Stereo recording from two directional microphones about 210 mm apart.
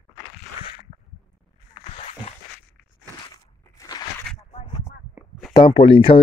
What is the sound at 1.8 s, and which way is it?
Zipper, 30° left (ahead or behind).